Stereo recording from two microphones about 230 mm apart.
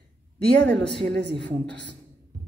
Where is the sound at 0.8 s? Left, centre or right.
Centre.